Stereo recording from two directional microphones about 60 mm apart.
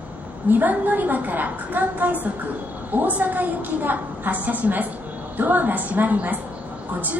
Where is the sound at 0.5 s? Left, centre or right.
Right.